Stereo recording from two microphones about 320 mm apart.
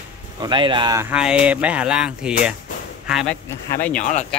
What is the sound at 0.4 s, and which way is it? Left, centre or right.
Speech, centre.